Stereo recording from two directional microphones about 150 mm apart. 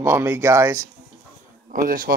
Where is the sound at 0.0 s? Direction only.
15° right (ahead or behind).